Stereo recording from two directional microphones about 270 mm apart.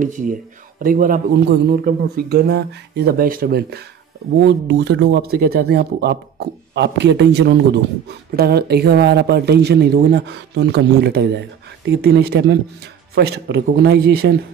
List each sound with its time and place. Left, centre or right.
0.0 s a man's voice: right